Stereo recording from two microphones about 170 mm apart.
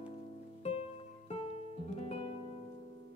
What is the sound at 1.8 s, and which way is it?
Music, 40° left (ahead or behind).